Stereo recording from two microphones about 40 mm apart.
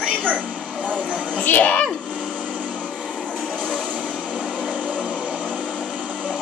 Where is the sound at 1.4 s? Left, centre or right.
Left.